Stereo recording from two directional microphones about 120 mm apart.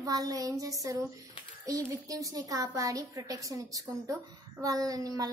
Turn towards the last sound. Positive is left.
turn(degrees=-30)  # may be behind; listen again after turning